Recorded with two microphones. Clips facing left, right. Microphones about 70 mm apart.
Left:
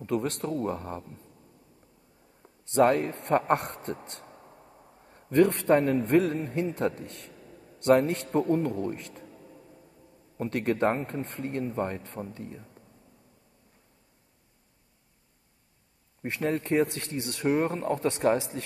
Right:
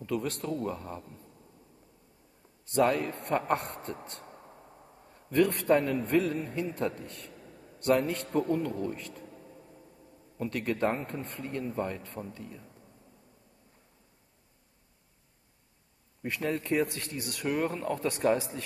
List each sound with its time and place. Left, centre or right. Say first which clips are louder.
0.0 s speech: left 3 dB; left
2.8 s speech: left 4 dB; left
3.1 s speech: left 4 dB; left
4.0 s speech: even; right
5.1 s speech: left 4 dB; left
7.8 s speech: left 4 dB; left
10.3 s speech: left 4 dB; left
16.2 s speech: left 3 dB; left